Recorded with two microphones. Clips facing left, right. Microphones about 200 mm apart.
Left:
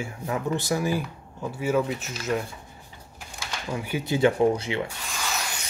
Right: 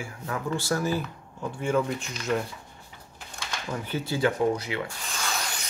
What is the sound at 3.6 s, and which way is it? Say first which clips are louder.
Speech: left 3 dB; 10° left (ahead or behind).